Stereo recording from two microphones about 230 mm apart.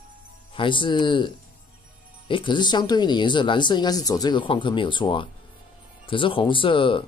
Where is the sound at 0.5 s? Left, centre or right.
Left.